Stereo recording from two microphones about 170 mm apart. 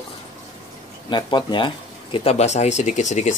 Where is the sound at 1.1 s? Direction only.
25° left (ahead or behind).